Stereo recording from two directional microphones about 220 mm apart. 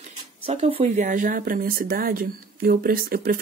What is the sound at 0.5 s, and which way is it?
Speech, 25° right (ahead or behind).